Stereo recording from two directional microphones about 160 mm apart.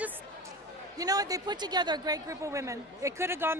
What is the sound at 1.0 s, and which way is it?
A woman's voice, 25° right (ahead or behind).